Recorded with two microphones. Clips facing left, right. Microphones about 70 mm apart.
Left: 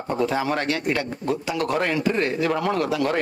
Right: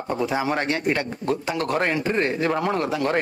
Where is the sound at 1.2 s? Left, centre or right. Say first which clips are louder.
Even; right.